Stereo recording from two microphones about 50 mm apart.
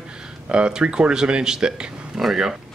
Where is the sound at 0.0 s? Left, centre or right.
Centre.